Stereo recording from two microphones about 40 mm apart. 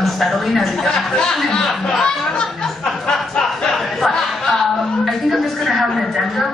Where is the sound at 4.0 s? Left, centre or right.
Centre.